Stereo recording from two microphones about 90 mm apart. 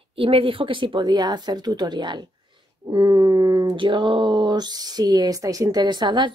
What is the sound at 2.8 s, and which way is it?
Speech, 45° right (ahead or behind).